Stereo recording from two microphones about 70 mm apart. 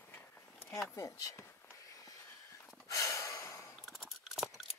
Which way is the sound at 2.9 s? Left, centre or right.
Left.